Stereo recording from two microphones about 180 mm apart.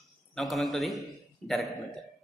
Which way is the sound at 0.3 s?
Centre (ahead or behind).